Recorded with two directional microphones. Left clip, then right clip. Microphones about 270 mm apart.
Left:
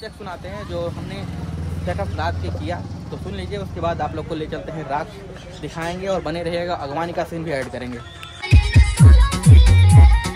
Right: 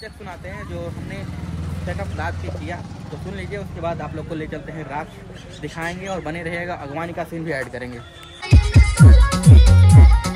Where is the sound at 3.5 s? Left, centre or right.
Centre.